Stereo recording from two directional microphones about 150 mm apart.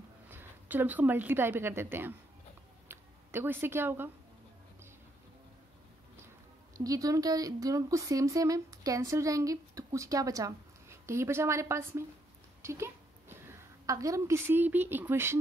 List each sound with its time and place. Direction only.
0.3 s a woman's voice: 15° right (ahead or behind)
6.8 s a woman's voice: 25° right (ahead or behind)